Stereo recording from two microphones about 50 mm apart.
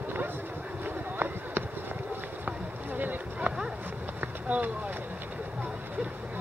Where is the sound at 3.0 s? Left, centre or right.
Right.